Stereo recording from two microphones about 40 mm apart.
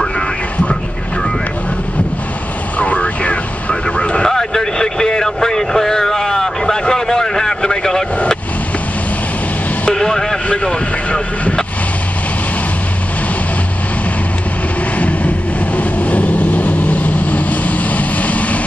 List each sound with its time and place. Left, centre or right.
2.8 s vehicle: left; by 8.0 s centre
9.8 s vehicle: centre
10.5 s speech: left
15.0 s vehicle: left